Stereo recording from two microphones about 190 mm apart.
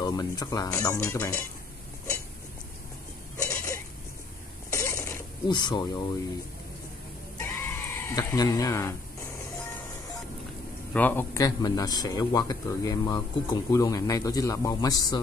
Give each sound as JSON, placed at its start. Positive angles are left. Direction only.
{"t": 0.0, "sound": "speech", "side_deg": 20}
{"t": 3.3, "sound": "hiccup", "side_deg": 15}
{"t": 4.7, "sound": "throat clearing", "side_deg": 15}
{"t": 7.3, "sound": "sheep", "side_deg": 15}
{"t": 10.9, "sound": "a man's voice", "side_deg": 10}